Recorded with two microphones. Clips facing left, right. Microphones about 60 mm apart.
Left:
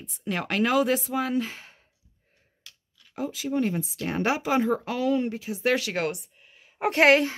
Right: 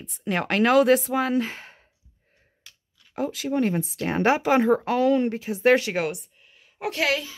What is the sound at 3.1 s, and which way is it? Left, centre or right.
Speech, right.